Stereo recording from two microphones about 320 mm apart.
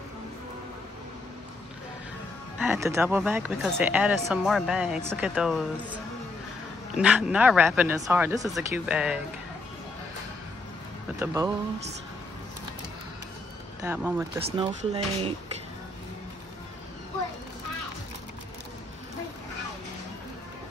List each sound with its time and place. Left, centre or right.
2.6 s speech: centre
7.0 s speech: centre
11.1 s speech: centre
13.8 s speech: centre
14.7 s speech: right